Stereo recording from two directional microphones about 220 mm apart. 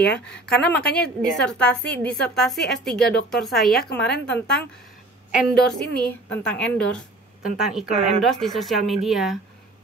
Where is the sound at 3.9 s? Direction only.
50° left (ahead or behind).